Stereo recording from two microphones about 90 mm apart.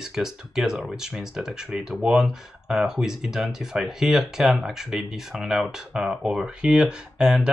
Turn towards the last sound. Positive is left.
turn(degrees=-10)  # may be behind; listen again after turning